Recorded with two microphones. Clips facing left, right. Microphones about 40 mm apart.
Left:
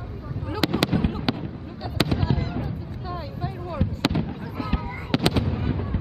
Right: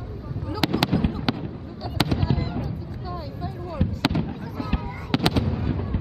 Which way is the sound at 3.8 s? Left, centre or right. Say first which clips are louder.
Right 1 dB; centre.